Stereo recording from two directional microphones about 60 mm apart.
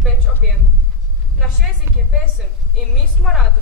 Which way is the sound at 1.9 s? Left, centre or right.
Right.